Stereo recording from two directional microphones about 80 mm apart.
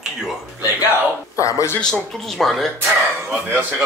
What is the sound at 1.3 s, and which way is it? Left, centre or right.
Speech, left.